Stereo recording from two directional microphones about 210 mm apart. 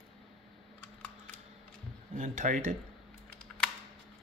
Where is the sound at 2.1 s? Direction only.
40° right (ahead or behind).